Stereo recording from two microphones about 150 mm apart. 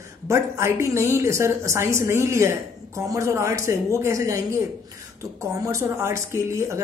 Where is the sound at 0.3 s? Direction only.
20° right (ahead or behind).